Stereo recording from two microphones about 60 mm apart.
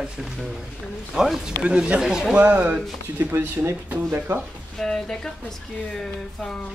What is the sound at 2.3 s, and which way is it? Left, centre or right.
Speech, right.